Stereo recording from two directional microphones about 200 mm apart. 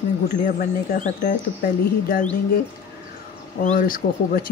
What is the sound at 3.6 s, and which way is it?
Speech, 45° left (ahead or behind).